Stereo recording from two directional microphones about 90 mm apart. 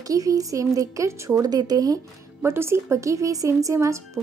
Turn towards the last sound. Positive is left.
turn(degrees=-35)  # may be behind; listen again after turning